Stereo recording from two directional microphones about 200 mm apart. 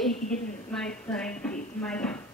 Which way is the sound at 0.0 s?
5° left (ahead or behind).